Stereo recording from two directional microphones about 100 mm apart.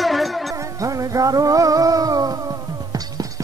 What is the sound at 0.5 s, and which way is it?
Music, 35° right (ahead or behind).